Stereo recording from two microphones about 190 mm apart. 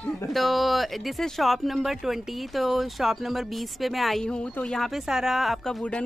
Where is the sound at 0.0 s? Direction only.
5° left (ahead or behind).